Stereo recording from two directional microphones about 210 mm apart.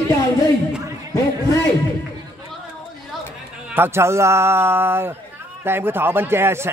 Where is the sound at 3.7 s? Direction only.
10° right (ahead or behind).